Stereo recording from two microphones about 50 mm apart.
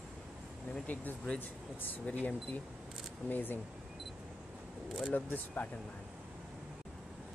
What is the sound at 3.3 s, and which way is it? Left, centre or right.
Speech, left.